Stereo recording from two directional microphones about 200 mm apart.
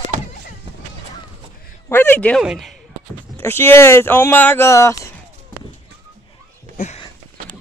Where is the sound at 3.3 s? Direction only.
10° left (ahead or behind).